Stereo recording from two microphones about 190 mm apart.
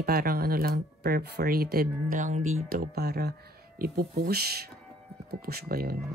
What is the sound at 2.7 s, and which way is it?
Speech, 55° right (ahead or behind).